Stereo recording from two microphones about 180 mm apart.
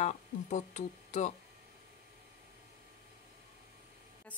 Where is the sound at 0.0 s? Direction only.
40° left (ahead or behind).